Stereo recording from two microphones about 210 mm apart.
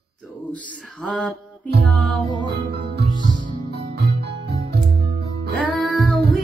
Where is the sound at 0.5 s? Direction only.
Centre (ahead or behind).